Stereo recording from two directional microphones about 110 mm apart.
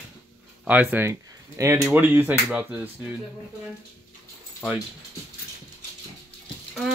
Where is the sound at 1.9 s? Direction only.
15° right (ahead or behind).